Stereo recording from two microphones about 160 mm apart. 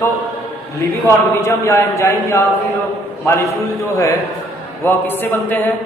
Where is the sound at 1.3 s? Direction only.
15° left (ahead or behind).